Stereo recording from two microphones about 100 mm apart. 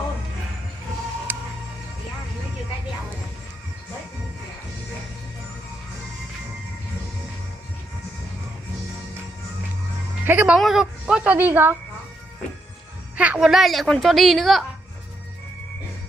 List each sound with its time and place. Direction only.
1.3 s music: 20° right (ahead or behind)
10.2 s speech: 15° right (ahead or behind)
10.6 s a woman's voice: 5° right (ahead or behind); by 11.7 s 20° right (ahead or behind)
13.1 s a woman's voice: 15° right (ahead or behind)